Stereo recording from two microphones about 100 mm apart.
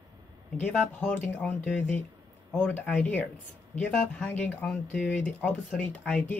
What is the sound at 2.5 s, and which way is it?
Speech, 15° left (ahead or behind).